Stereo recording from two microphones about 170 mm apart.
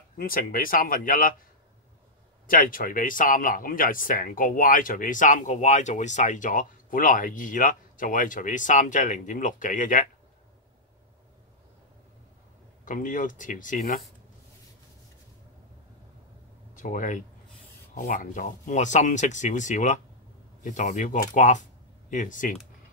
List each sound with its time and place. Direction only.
0.2 s speech: 55° left (ahead or behind)
2.4 s speech: 55° left (ahead or behind)
12.8 s speech: 50° left (ahead or behind)
16.7 s speech: 50° left (ahead or behind)